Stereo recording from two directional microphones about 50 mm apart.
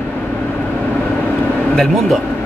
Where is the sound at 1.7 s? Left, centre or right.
Centre.